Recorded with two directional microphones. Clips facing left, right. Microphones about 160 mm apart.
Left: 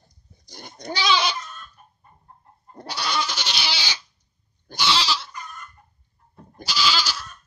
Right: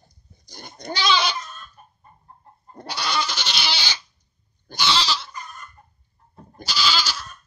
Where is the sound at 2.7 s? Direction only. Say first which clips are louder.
Right 1 dB; 5° left (ahead or behind).